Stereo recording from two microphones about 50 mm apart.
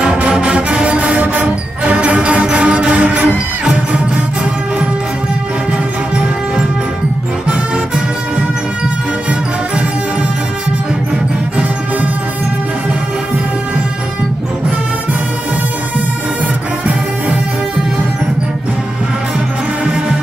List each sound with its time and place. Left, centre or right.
0.0 s music: right